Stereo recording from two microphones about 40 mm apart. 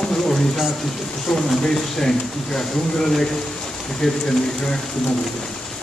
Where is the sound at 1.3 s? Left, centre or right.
Centre.